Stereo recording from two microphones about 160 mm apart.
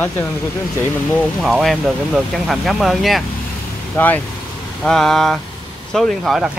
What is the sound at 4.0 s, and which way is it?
Speech, 15° left (ahead or behind).